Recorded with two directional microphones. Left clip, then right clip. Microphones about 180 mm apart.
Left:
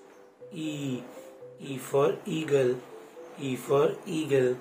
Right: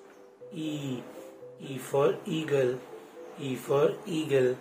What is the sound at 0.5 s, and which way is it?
Speech, 5° left (ahead or behind).